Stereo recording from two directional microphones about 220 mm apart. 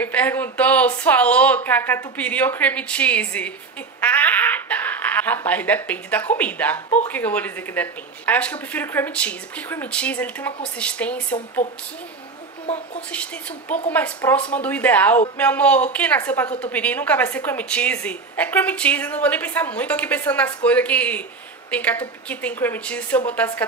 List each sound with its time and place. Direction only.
0.0 s a woman's voice: 5° left (ahead or behind)
12.6 s speech: 30° left (ahead or behind)
13.1 s a woman's voice: 5° left (ahead or behind)